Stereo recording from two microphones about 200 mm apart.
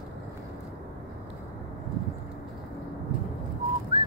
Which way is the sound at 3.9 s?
25° right (ahead or behind).